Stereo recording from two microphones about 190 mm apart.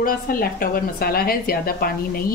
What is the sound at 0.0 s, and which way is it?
A woman's voice, 50° left (ahead or behind).